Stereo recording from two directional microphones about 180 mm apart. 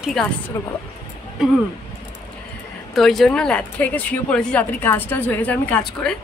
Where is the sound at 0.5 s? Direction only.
15° left (ahead or behind).